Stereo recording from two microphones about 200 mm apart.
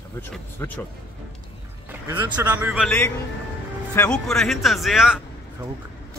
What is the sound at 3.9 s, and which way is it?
Speech, 10° left (ahead or behind).